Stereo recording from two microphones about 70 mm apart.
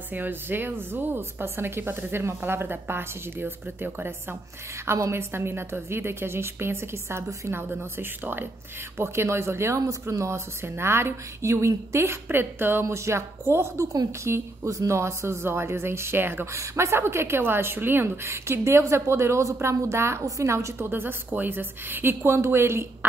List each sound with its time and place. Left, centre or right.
0.1 s speech: right
4.8 s speech: right
12.8 s speech: right
16.5 s speech: right